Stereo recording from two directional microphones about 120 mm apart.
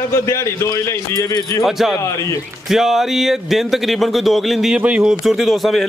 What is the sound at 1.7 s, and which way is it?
Speech, centre (ahead or behind).